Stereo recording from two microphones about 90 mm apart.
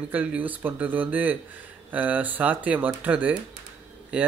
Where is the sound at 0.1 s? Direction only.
15° right (ahead or behind).